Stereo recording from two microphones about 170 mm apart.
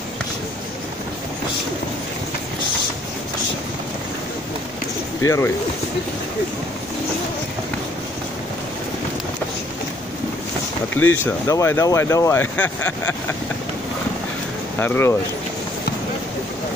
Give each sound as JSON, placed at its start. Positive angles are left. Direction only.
{"t": 5.2, "sound": "speech", "side_deg": 15}
{"t": 11.0, "sound": "speech", "side_deg": 15}
{"t": 14.8, "sound": "speech", "side_deg": 10}